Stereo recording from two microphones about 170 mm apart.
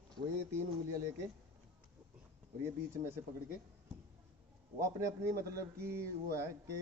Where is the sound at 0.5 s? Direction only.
15° right (ahead or behind).